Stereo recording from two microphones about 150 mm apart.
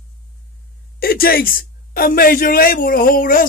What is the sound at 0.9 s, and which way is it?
A man's voice, 75° left (ahead or behind).